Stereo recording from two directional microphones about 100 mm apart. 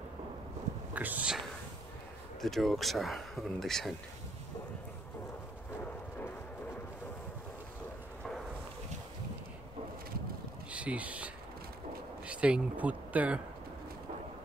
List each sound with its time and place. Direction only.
0.9 s speech: 15° right (ahead or behind)
2.4 s speech: centre (ahead or behind)
10.7 s speech: 10° right (ahead or behind)